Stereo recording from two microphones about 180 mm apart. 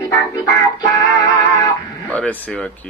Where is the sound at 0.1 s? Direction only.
20° left (ahead or behind).